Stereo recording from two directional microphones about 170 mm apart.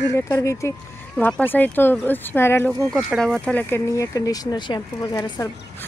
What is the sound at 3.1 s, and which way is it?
Speech, centre (ahead or behind).